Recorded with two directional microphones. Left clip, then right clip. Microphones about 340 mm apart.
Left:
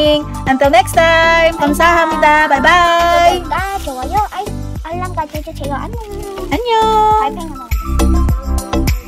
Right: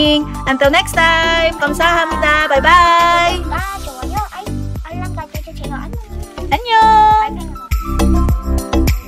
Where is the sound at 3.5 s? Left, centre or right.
Left.